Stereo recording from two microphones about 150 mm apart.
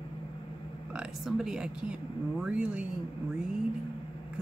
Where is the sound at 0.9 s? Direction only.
5° right (ahead or behind).